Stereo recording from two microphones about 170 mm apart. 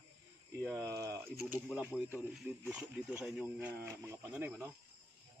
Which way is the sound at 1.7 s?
5° right (ahead or behind).